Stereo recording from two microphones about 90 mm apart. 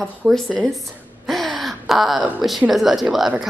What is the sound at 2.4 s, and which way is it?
Speech, centre (ahead or behind).